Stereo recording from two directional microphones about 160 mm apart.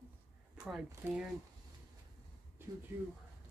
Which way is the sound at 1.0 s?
10° right (ahead or behind).